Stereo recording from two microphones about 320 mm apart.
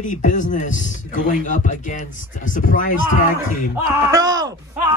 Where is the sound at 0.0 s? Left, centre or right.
Left.